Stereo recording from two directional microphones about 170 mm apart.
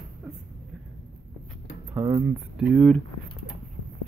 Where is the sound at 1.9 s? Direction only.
20° right (ahead or behind).